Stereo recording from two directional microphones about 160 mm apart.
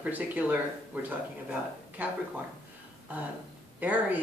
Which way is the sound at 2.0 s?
10° right (ahead or behind).